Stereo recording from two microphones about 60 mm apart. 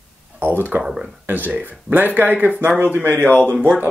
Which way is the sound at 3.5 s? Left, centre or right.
Centre.